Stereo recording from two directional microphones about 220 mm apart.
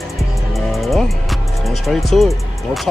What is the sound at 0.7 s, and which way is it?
Music, centre (ahead or behind).